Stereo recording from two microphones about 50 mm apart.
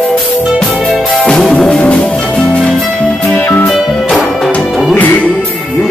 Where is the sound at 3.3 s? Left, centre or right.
Left.